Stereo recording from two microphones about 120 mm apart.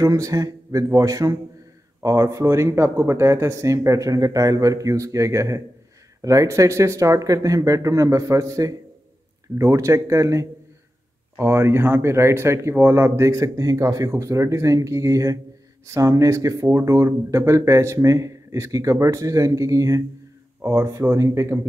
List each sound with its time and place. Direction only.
0.0 s speech: 30° right (ahead or behind)